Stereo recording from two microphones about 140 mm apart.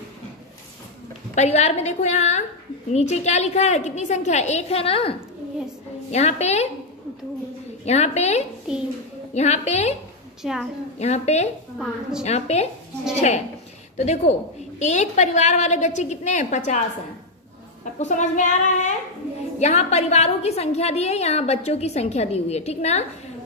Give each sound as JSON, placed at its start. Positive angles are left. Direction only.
{"t": 1.3, "sound": "a woman's voice", "side_deg": 55}
{"t": 6.1, "sound": "a woman's voice", "side_deg": 50}
{"t": 7.8, "sound": "a woman's voice", "side_deg": 50}
{"t": 8.7, "sound": "a woman's voice", "side_deg": -5}
{"t": 9.3, "sound": "a woman's voice", "side_deg": 55}
{"t": 10.4, "sound": "a woman's voice", "side_deg": 0}
{"t": 11.0, "sound": "a woman's voice", "side_deg": 55}
{"t": 11.8, "sound": "a woman's voice", "side_deg": -5}
{"t": 12.3, "sound": "a woman's voice", "side_deg": 50}
{"t": 13.9, "sound": "a woman's voice", "side_deg": 55}
{"t": 17.9, "sound": "a woman's voice", "side_deg": 55}